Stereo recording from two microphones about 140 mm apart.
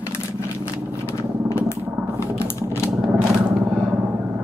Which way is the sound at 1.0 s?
20° left (ahead or behind).